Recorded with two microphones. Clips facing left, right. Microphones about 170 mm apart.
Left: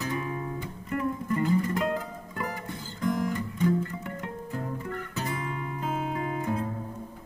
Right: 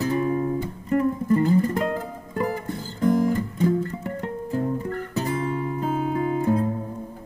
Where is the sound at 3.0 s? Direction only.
35° right (ahead or behind).